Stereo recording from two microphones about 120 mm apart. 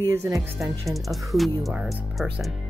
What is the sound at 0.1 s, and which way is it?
Music, 25° right (ahead or behind).